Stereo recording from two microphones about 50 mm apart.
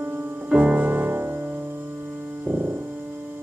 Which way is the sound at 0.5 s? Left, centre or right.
Right.